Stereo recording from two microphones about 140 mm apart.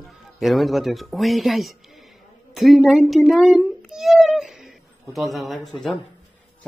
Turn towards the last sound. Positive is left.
turn(degrees=0)  # may be behind; listen again after turning